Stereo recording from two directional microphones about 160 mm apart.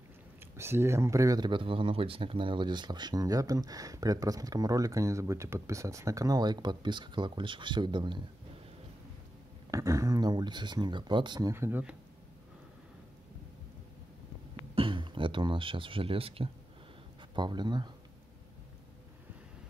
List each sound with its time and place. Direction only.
0.6 s speech: 15° right (ahead or behind)
9.7 s speech: 20° right (ahead or behind)
11.5 s speech: 15° right (ahead or behind)
14.8 s speech: 30° right (ahead or behind)